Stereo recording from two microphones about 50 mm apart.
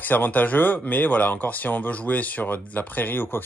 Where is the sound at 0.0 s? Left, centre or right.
Left.